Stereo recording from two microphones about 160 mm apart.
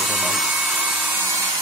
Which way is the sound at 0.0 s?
Centre (ahead or behind).